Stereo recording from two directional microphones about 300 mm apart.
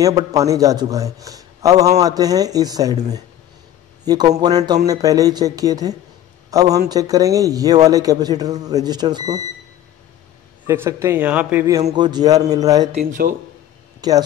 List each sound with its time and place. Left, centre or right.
0.0 s a man's voice: centre
4.0 s a man's voice: centre
10.7 s a man's voice: centre
13.0 s speech: right
14.0 s a man's voice: centre